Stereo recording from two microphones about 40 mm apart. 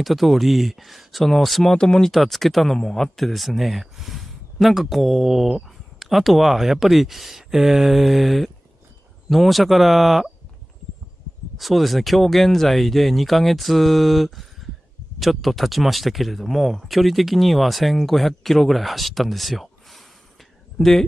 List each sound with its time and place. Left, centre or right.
0.0 s speech: centre
1.7 s speech: centre
2.0 s speech: centre
11.5 s speech: centre